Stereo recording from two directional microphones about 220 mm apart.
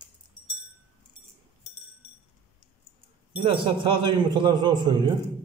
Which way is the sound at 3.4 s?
25° right (ahead or behind).